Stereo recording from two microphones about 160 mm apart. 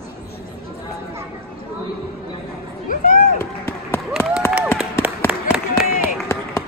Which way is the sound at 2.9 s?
55° left (ahead or behind).